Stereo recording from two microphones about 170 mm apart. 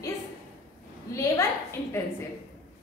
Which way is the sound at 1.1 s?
15° left (ahead or behind).